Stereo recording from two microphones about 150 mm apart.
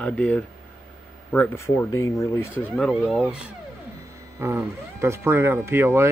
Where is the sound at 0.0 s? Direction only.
5° left (ahead or behind).